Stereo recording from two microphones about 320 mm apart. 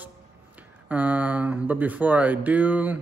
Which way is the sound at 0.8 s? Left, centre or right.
Centre.